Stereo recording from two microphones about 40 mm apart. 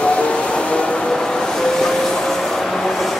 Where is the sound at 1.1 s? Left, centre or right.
Centre.